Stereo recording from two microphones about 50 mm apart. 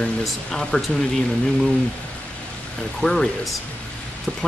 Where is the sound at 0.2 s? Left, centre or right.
Centre.